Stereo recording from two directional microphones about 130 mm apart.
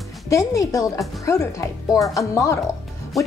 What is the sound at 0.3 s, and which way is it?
Speech, 25° left (ahead or behind).